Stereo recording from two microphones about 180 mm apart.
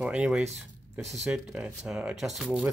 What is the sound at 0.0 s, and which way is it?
Speech, 5° right (ahead or behind).